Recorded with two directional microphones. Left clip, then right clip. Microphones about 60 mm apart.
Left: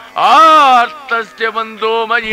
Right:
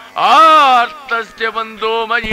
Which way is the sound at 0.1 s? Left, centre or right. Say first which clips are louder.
Left 1 dB; left.